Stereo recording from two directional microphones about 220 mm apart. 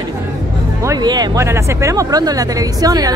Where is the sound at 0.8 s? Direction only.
15° right (ahead or behind).